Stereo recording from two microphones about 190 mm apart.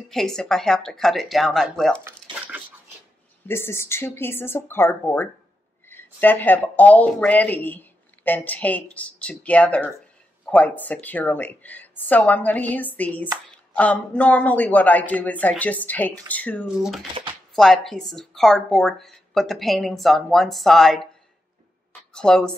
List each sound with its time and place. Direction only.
0.1 s a woman's voice: centre (ahead or behind)
2.3 s a sound: 25° right (ahead or behind)
3.4 s speech: 10° left (ahead or behind)
16.6 s a woman's voice: 5° right (ahead or behind)
22.1 s a woman's voice: 5° left (ahead or behind)